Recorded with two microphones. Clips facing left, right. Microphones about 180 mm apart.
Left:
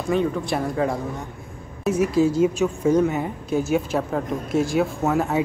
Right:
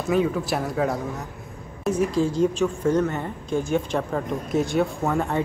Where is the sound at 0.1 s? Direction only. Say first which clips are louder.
Even; 5° right (ahead or behind).